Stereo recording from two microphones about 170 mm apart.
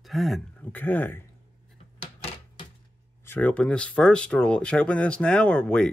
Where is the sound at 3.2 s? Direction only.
10° left (ahead or behind).